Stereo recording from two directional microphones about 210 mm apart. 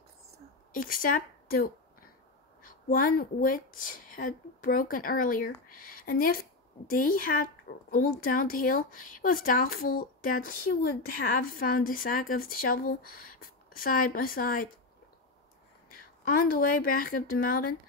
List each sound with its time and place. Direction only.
0.7 s a woman's voice: 45° left (ahead or behind)
16.0 s a woman's voice: 45° left (ahead or behind)